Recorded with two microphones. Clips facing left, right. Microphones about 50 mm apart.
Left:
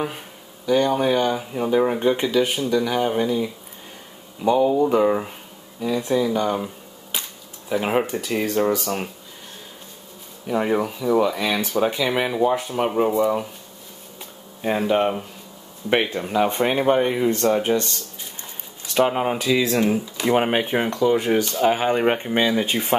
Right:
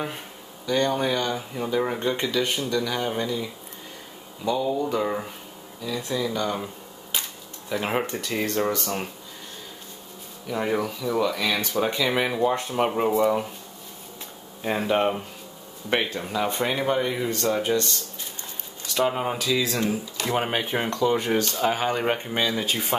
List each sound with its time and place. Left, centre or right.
0.7 s speech: centre
4.5 s speech: left
5.0 s speech: centre
6.6 s a sound: centre
7.7 s speech: centre
10.4 s speech: centre
11.7 s speech: centre
14.6 s speech: centre
15.9 s speech: centre
18.9 s speech: left
20.2 s speech: centre
20.8 s speech: centre; by 22.9 s left